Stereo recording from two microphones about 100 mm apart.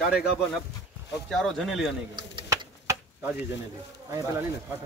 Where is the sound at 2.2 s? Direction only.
45° right (ahead or behind).